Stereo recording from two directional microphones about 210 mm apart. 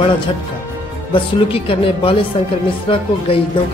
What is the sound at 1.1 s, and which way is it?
Speech, 25° left (ahead or behind).